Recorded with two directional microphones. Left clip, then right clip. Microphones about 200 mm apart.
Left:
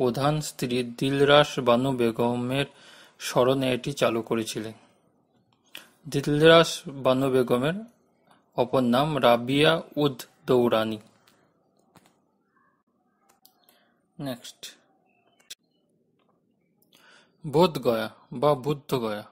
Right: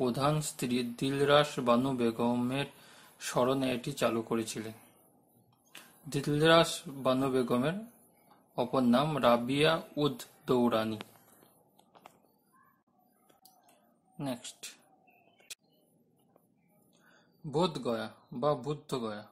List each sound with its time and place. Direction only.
0.0 s speech: 30° left (ahead or behind)
14.1 s speech: 25° left (ahead or behind)
17.5 s speech: 35° left (ahead or behind)